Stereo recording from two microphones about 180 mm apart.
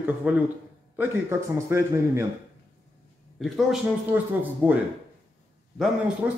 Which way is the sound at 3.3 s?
Centre (ahead or behind).